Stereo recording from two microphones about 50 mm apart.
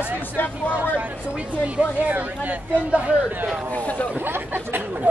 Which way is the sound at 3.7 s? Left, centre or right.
Left.